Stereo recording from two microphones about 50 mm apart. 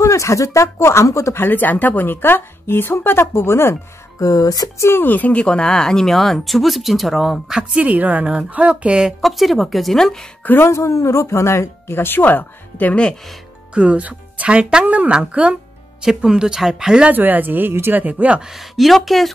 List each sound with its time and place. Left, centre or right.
0.0 s speech: left
1.4 s speech: left
4.9 s speech: left
5.4 s speech: left; by 7.5 s centre
7.8 s a woman's voice: right
9.2 s speech: centre
10.6 s speech: left
13.7 s a woman's voice: right
16.0 s speech: centre
17.1 s speech: right
18.0 s speech: right
18.5 s speech: centre